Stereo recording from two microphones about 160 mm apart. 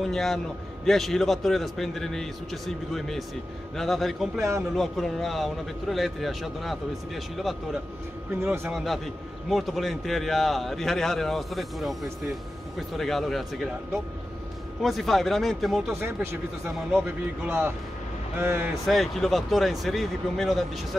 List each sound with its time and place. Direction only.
0.0 s a man's voice: centre (ahead or behind)
14.8 s a man's voice: centre (ahead or behind)
16.0 s speech: 15° right (ahead or behind)
18.9 s a man's voice: centre (ahead or behind)